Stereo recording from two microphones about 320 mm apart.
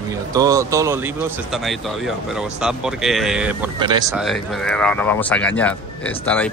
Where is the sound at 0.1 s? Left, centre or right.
Centre.